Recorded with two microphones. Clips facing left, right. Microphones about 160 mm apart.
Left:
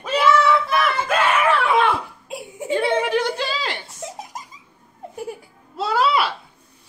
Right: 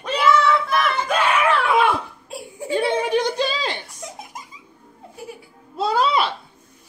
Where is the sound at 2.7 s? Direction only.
15° right (ahead or behind).